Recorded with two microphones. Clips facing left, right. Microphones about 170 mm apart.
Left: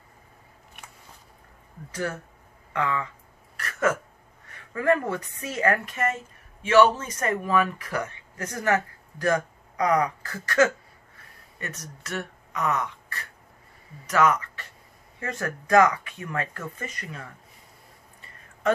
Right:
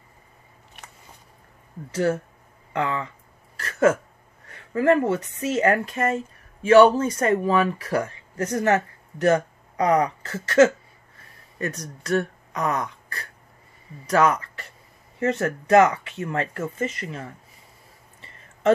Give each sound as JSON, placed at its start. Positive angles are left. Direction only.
{"t": 1.9, "sound": "speech", "side_deg": -30}
{"t": 3.5, "sound": "a sound", "side_deg": -30}
{"t": 4.5, "sound": "speech", "side_deg": -30}